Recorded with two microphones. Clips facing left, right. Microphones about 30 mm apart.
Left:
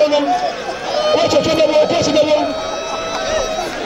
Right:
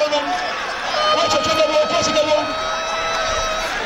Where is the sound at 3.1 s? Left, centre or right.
Centre.